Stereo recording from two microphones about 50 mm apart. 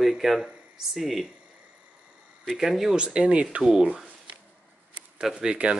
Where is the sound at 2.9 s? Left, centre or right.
Centre.